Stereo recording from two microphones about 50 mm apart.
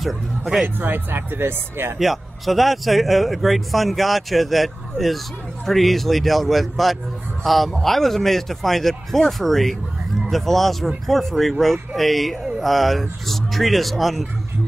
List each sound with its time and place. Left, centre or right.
0.0 s speech: centre
0.7 s speech: right
2.0 s speech: centre